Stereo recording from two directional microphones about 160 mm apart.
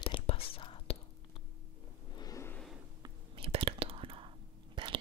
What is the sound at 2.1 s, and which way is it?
Vehicle, 20° left (ahead or behind).